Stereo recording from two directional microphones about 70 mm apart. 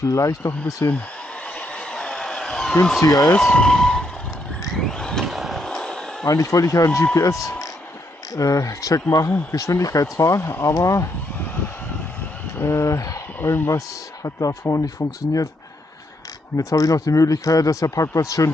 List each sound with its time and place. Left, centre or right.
0.0 s speech: left
1.9 s a sound: centre
3.0 s speech: left
3.3 s speech: centre
4.7 s vehicle: centre
5.2 s a sound: centre
5.6 s a sound: centre
6.2 s speech: left
12.5 s speech: left
13.4 s speech: left
13.7 s speech: left
16.5 s speech: left